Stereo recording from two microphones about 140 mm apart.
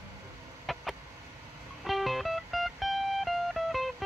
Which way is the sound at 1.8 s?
Centre (ahead or behind).